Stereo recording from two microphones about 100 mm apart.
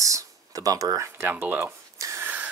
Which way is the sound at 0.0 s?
35° right (ahead or behind).